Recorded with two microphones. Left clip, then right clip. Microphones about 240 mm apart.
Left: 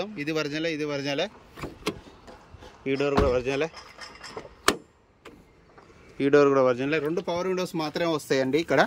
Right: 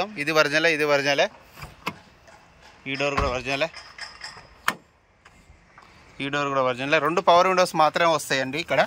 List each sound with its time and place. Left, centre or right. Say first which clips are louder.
0.0 s speech: right 8 dB; centre
2.8 s speech: left 1 dB; centre
6.1 s speech: left 5 dB; left
7.1 s speech: right 10 dB; right
7.5 s speech: right 10 dB; centre